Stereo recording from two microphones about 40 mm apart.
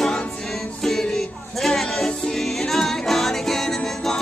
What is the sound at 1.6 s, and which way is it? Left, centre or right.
Music, centre.